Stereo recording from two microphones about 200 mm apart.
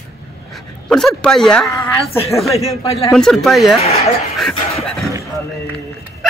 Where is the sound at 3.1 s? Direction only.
Centre (ahead or behind).